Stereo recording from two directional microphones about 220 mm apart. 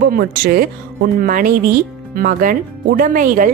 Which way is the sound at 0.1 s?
40° right (ahead or behind).